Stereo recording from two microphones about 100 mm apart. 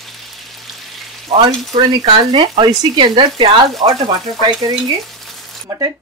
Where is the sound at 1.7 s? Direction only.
55° right (ahead or behind).